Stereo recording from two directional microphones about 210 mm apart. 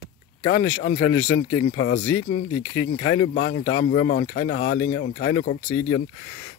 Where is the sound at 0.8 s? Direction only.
65° left (ahead or behind).